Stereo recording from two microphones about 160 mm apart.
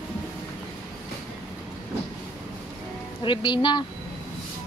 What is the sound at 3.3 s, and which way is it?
Speech, 30° left (ahead or behind).